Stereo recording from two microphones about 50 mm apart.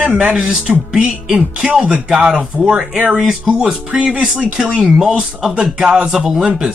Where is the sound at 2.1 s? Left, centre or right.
Centre.